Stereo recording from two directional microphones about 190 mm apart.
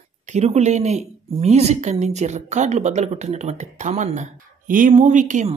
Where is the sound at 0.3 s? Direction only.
35° right (ahead or behind).